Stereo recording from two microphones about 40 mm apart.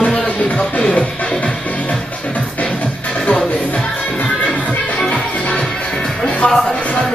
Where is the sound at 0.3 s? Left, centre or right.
Left.